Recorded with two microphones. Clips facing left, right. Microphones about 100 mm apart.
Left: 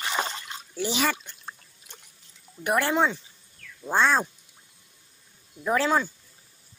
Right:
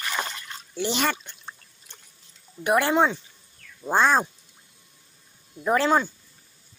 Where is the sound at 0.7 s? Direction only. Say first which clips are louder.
Right 1 dB; 5° left (ahead or behind).